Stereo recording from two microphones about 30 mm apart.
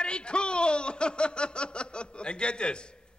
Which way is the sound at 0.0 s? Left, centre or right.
Left.